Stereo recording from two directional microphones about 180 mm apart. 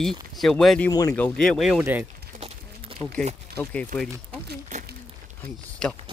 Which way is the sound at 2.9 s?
30° right (ahead or behind).